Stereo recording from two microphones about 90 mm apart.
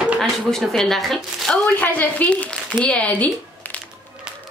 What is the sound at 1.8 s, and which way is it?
A woman's voice, 15° left (ahead or behind).